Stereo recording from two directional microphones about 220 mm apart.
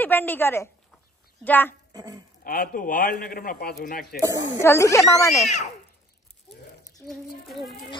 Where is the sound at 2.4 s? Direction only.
40° left (ahead or behind).